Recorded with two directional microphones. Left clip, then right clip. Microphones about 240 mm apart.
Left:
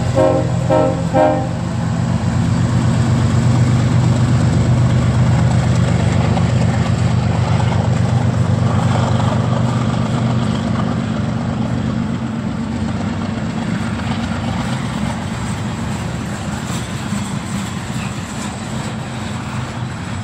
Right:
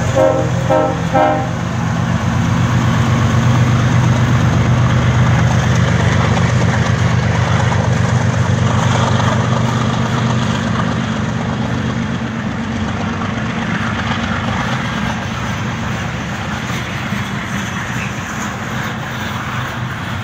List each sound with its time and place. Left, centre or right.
0.2 s train: centre
5.5 s vehicle: centre